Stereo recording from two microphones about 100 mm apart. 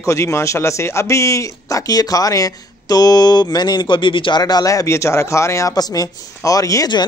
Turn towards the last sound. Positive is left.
turn(degrees=35)  # may be behind; listen again after turning